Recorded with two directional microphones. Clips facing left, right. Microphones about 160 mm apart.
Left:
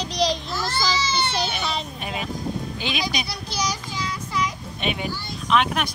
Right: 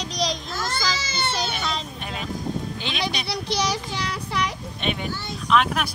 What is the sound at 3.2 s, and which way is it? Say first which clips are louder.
A child's voice: right 3 dB; 70° right (ahead or behind).